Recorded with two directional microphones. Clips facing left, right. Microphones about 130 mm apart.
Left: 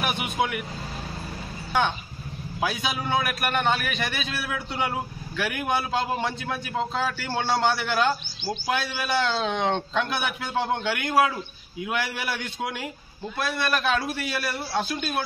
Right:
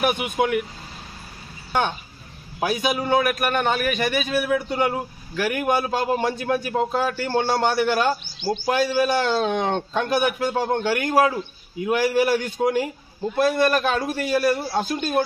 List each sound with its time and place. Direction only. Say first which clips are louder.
0.0 s a man's voice: right 5 dB; 45° right (ahead or behind)
1.7 s a man's voice: right 1 dB; 50° right (ahead or behind)